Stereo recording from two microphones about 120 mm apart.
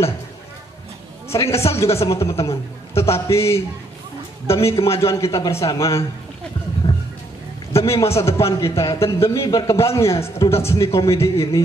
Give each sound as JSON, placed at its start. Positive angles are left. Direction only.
{"t": 1.3, "sound": "a man's voice", "side_deg": 25}
{"t": 6.8, "sound": "music", "side_deg": 50}
{"t": 7.8, "sound": "a man's voice", "side_deg": 25}